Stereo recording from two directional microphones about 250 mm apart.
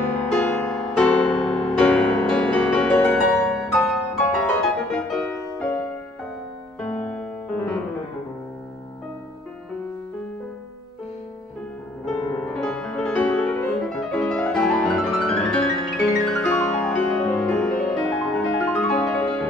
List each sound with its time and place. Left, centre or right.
0.0 s music: centre
6.9 s music: centre
12.5 s music: centre